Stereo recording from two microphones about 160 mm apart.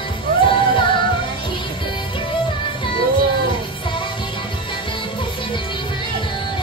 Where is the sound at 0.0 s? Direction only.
30° left (ahead or behind).